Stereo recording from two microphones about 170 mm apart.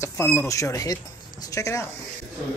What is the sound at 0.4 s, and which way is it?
A man's voice, 15° left (ahead or behind).